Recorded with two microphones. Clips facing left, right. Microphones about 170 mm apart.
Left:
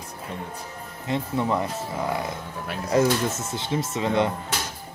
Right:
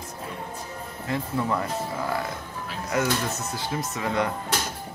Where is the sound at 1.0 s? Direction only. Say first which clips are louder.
Left 2 dB; 20° left (ahead or behind).